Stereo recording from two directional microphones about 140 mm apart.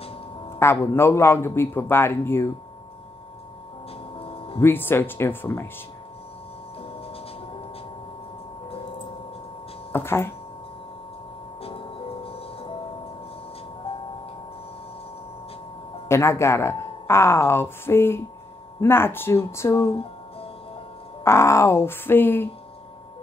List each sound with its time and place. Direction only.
0.6 s a man's voice: 20° left (ahead or behind)
4.2 s music: 40° left (ahead or behind)
4.6 s a man's voice: 15° left (ahead or behind)
9.9 s a man's voice: 15° left (ahead or behind)
11.6 s music: 40° left (ahead or behind)
13.9 s music: 45° left (ahead or behind)
16.1 s a man's voice: 20° left (ahead or behind)
21.2 s a man's voice: 20° left (ahead or behind)